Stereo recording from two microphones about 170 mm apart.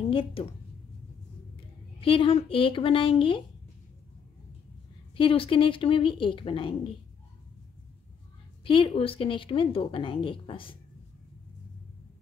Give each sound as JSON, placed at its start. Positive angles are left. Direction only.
{"t": 0.1, "sound": "a woman's voice", "side_deg": 35}
{"t": 2.0, "sound": "speech", "side_deg": 30}
{"t": 5.1, "sound": "speech", "side_deg": 30}
{"t": 8.6, "sound": "speech", "side_deg": 30}